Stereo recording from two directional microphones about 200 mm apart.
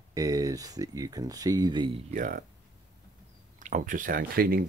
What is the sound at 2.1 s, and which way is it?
Speech, 45° right (ahead or behind).